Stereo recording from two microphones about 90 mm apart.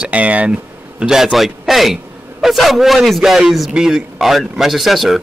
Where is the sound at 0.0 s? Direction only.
15° right (ahead or behind).